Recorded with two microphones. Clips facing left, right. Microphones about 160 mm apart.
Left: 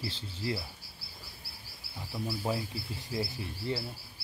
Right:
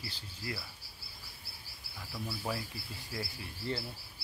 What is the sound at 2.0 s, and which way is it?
Speech, 20° left (ahead or behind).